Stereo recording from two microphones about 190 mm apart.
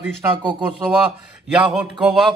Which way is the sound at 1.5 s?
5° right (ahead or behind).